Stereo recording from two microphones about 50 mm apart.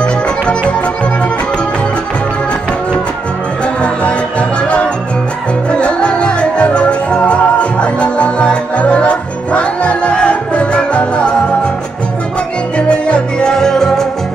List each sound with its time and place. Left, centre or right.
0.0 s music: left
3.8 s music: left
12.7 s music: left